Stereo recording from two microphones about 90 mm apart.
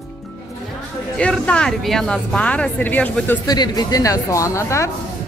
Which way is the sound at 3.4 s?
50° left (ahead or behind).